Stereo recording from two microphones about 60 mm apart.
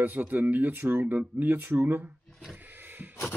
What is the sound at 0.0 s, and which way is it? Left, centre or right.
Speech, right.